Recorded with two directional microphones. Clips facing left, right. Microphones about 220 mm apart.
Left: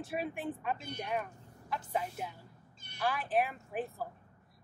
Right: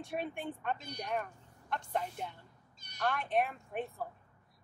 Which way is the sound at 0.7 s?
40° right (ahead or behind).